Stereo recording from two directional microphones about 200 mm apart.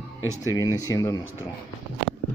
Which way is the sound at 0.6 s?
15° left (ahead or behind).